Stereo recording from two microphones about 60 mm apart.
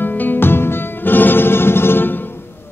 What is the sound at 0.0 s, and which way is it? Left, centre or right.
Music, left.